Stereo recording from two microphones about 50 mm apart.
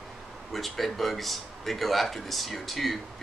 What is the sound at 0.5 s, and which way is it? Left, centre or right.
Speech, centre.